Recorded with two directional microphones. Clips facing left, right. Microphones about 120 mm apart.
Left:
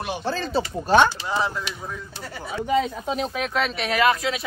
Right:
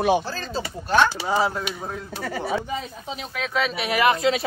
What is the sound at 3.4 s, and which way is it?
Speech, centre (ahead or behind).